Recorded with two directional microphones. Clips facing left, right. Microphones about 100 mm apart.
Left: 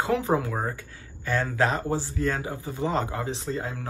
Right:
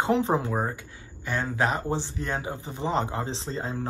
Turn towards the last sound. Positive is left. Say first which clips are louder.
# even
turn(degrees=-30)  # may be behind; listen again after turning